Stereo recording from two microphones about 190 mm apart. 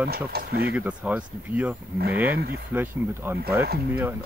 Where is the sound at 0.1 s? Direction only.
55° right (ahead or behind).